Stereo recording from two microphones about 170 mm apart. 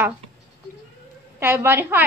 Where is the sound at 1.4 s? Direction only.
15° right (ahead or behind).